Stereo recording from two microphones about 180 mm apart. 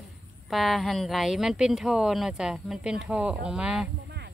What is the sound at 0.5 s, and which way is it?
Speech, centre (ahead or behind).